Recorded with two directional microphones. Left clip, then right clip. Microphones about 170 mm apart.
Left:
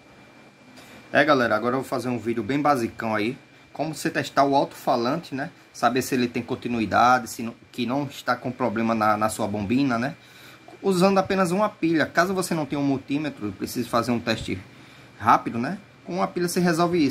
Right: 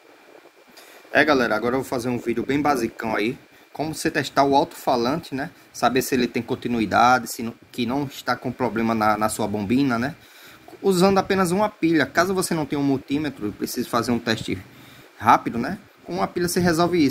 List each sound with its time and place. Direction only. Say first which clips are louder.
1.1 s speech: right 1 dB; 15° right (ahead or behind)